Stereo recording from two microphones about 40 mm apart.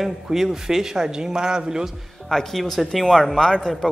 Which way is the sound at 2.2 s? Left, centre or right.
Centre.